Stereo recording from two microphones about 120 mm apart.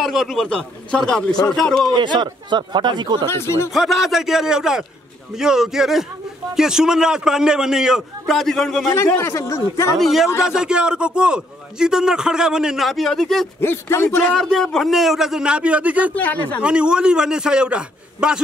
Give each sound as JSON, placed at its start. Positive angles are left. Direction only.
{"t": 0.0, "sound": "a man's voice", "side_deg": 0}
{"t": 0.5, "sound": "a man's voice", "side_deg": 10}
{"t": 2.1, "sound": "speech", "side_deg": -40}
{"t": 3.3, "sound": "speech", "side_deg": 20}
{"t": 3.7, "sound": "a man's voice", "side_deg": 0}
{"t": 8.8, "sound": "speech", "side_deg": 25}
{"t": 9.9, "sound": "a man's voice", "side_deg": 0}
{"t": 13.6, "sound": "speech", "side_deg": 20}
{"t": 14.0, "sound": "a man's voice", "side_deg": 10}
{"t": 16.2, "sound": "a man's voice", "side_deg": 15}
{"t": 16.6, "sound": "a man's voice", "side_deg": -10}